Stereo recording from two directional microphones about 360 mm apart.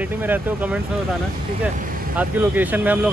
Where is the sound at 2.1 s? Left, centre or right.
Centre.